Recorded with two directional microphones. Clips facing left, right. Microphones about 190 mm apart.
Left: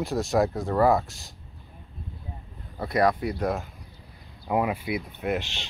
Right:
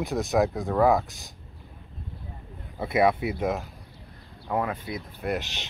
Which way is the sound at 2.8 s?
5° right (ahead or behind).